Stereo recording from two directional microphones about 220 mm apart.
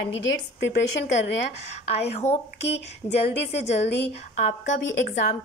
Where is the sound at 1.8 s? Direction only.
30° left (ahead or behind).